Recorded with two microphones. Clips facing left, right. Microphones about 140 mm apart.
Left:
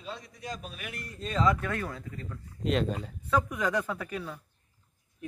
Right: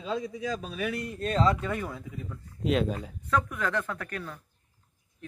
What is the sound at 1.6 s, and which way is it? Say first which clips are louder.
A man's voice: right 1 dB; 10° right (ahead or behind).